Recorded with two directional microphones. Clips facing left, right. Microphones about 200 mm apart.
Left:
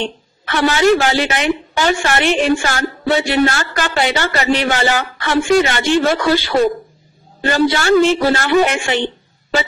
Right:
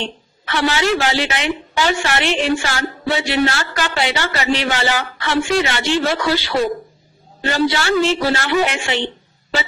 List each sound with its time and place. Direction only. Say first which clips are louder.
0.5 s a woman's voice: left 5 dB; 45° left (ahead or behind)